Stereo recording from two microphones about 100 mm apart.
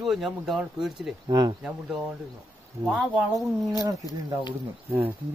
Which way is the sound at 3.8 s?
35° right (ahead or behind).